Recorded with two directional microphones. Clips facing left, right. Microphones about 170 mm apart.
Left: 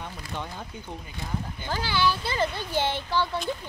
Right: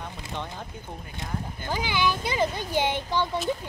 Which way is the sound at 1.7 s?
15° right (ahead or behind).